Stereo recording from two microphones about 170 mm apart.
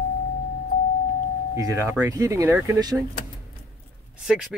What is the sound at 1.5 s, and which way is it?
Speech, 15° right (ahead or behind).